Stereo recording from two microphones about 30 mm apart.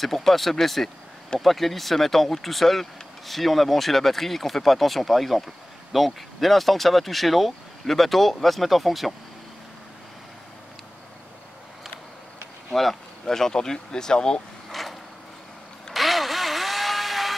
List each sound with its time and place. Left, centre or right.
0.0 s speech: centre
13.2 s speech: centre
14.7 s vehicle: centre